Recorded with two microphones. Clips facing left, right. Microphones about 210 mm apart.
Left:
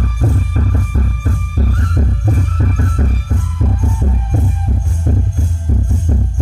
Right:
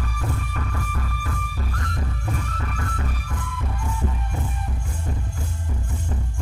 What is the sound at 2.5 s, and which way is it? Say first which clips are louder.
Music: left 11 dB; 30° left (ahead or behind).